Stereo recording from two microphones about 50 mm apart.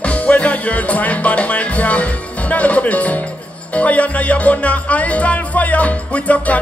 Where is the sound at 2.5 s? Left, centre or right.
Left.